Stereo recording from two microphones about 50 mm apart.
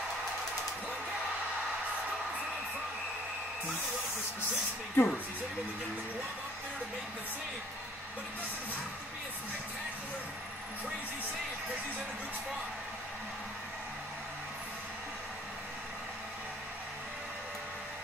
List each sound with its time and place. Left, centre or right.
5.0 s speech: left